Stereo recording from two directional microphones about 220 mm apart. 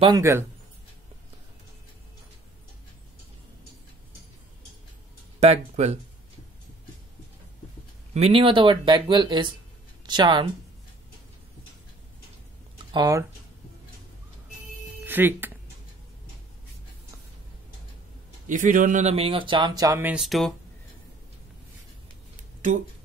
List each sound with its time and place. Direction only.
0.0 s speech: 15° right (ahead or behind)
5.4 s speech: 30° right (ahead or behind)
8.1 s speech: 25° right (ahead or behind)
12.9 s speech: 15° right (ahead or behind)
15.0 s music: 10° right (ahead or behind)
18.5 s speech: 35° right (ahead or behind); by 20.5 s centre (ahead or behind)